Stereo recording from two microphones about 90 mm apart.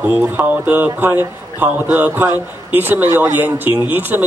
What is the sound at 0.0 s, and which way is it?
Speech, 15° right (ahead or behind).